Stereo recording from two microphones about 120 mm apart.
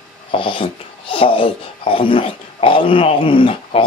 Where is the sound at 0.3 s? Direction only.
45° left (ahead or behind).